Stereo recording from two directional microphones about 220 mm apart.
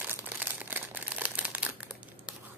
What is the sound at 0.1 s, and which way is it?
Crumpling, 5° right (ahead or behind).